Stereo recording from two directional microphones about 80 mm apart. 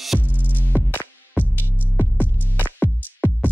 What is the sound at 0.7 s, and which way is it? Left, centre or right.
Music, left.